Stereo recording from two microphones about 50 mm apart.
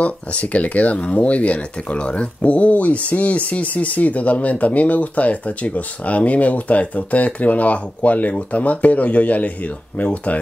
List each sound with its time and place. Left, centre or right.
0.0 s speech: left